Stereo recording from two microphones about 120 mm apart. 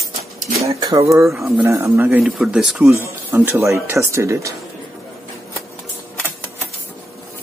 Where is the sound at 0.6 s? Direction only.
25° right (ahead or behind).